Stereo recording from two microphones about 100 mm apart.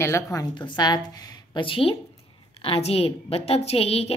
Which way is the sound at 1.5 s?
60° left (ahead or behind).